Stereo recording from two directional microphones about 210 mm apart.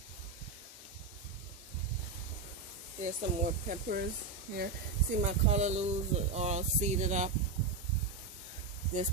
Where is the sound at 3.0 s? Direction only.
35° right (ahead or behind).